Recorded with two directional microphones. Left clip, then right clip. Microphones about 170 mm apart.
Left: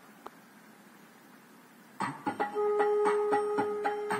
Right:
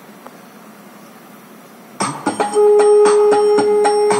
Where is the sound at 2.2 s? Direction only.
25° left (ahead or behind).